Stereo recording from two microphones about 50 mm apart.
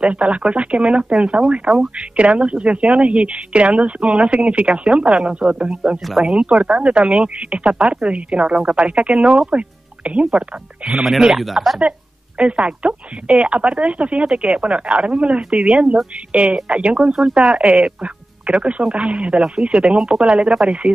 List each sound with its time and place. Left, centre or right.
0.0 s a woman's voice: right
11.1 s speech: centre
12.4 s a woman's voice: right